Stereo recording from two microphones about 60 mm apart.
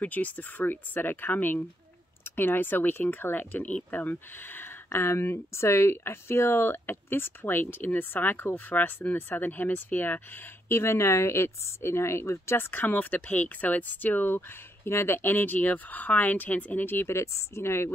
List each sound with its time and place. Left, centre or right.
0.0 s speech: left
14.9 s speech: left